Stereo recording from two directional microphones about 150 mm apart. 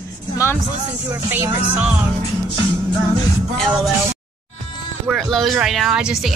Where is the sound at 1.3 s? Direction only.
10° right (ahead or behind).